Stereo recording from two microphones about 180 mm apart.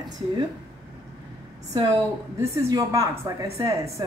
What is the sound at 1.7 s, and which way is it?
A woman's voice, 15° right (ahead or behind).